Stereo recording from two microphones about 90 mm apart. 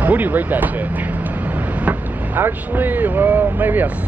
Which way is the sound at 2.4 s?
20° right (ahead or behind).